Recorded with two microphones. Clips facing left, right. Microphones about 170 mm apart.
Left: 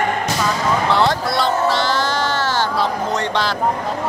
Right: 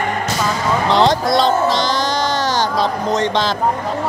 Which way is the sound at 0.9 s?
20° right (ahead or behind).